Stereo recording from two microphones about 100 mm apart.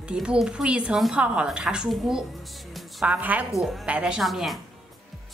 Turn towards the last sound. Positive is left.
turn(degrees=0)  # may be behind; listen again after turning